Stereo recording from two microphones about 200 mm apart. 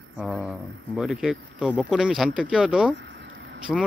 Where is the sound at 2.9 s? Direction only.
65° right (ahead or behind).